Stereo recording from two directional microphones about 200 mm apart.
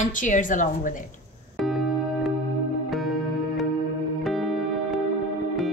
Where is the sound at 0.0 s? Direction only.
40° left (ahead or behind).